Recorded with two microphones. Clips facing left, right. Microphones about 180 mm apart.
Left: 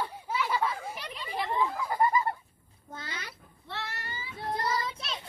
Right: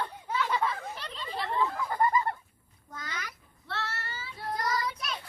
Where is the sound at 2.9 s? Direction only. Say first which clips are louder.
Right 1 dB; 30° left (ahead or behind).